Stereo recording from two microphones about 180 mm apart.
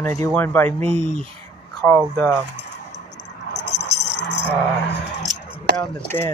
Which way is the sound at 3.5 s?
70° left (ahead or behind).